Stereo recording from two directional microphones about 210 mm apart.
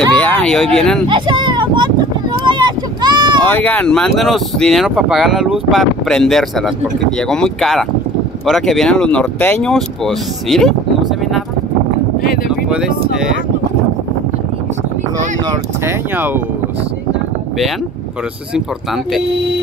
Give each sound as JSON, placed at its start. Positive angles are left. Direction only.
{"t": 0.1, "sound": "speech", "side_deg": 5}
{"t": 1.0, "sound": "speech", "side_deg": -20}
{"t": 2.4, "sound": "a sound", "side_deg": -20}
{"t": 3.4, "sound": "speech", "side_deg": 10}
{"t": 12.6, "sound": "speech", "side_deg": -5}